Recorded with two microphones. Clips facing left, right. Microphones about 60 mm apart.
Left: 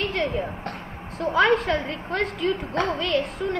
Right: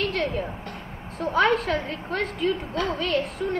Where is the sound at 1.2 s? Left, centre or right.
Left.